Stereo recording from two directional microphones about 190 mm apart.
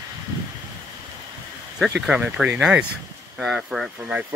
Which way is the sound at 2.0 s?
5° right (ahead or behind).